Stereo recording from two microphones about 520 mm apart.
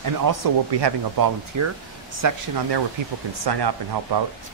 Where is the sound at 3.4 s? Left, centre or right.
Right.